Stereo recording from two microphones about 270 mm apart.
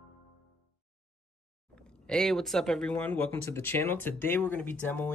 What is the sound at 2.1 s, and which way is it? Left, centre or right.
Speech, centre.